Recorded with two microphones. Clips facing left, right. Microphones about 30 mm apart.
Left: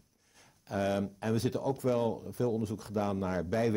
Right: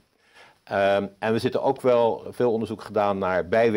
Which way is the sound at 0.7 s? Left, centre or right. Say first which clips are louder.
Right 10 dB; right.